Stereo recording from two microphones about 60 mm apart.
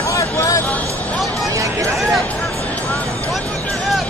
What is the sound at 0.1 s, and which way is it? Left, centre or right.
Music, left.